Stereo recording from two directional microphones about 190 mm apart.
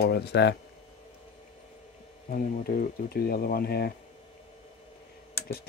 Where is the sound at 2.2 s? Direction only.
45° left (ahead or behind).